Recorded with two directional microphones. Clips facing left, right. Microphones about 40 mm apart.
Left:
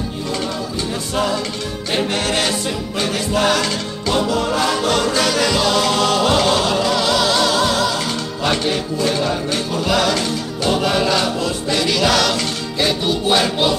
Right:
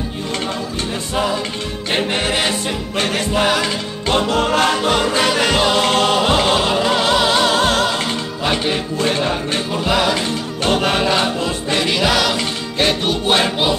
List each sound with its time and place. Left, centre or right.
1.9 s music: right
3.0 s music: right
3.3 s music: centre
4.1 s music: right
4.8 s music: right
9.8 s music: centre
10.6 s music: right; by 12.4 s centre
12.7 s music: right